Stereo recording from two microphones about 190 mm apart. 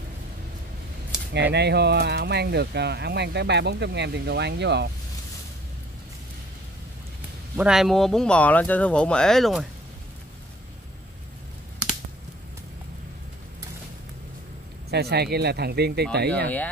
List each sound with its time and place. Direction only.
1.5 s speech: 60° right (ahead or behind)
7.5 s speech: 5° right (ahead or behind)
14.9 s speech: 60° right (ahead or behind)
16.4 s speech: 10° left (ahead or behind)